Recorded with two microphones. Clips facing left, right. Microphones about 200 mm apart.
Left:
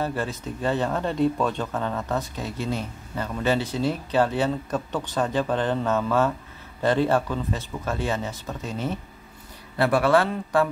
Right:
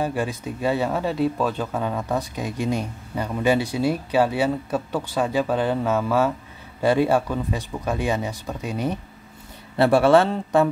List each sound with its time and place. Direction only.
0.0 s speech: 10° right (ahead or behind)
9.8 s a man's voice: 25° right (ahead or behind)